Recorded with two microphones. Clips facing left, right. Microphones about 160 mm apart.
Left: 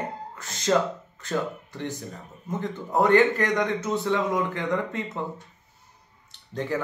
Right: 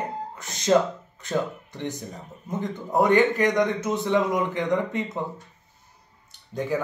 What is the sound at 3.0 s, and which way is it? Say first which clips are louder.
Speech: even; 15° right (ahead or behind).